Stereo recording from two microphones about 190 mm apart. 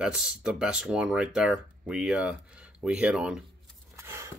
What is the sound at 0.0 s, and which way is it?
Speech, 5° right (ahead or behind).